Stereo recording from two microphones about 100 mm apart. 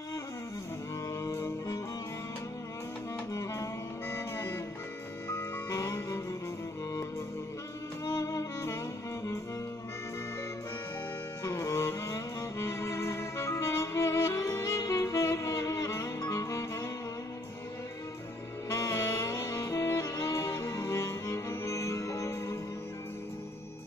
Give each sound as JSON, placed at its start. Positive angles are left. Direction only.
{"t": 1.2, "sound": "music", "side_deg": 30}
{"t": 4.1, "sound": "music", "side_deg": 30}
{"t": 8.0, "sound": "music", "side_deg": 35}
{"t": 11.4, "sound": "music", "side_deg": 30}
{"t": 18.7, "sound": "music", "side_deg": 30}